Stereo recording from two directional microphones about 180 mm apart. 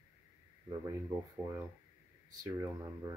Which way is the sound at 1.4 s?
15° right (ahead or behind).